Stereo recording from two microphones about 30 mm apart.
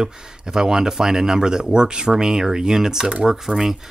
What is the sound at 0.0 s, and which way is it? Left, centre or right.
Speech, right.